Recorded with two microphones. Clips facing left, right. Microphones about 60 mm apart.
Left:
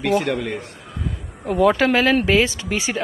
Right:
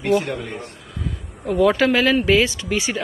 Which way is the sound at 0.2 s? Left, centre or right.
Left.